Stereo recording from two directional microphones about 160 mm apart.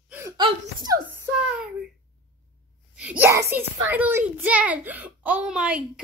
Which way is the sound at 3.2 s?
15° right (ahead or behind).